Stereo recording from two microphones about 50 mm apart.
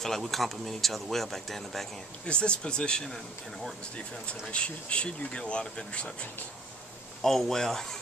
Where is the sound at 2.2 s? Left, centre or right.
Left.